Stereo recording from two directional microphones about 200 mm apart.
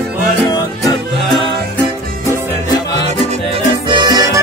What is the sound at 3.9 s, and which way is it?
Music, 20° right (ahead or behind).